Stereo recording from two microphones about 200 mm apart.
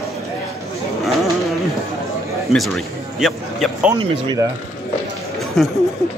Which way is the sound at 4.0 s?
20° right (ahead or behind).